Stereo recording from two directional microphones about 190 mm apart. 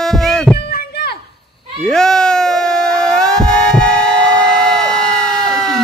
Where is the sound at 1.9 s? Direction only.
5° left (ahead or behind).